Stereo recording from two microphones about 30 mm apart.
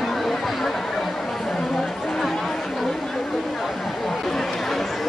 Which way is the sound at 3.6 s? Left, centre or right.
Centre.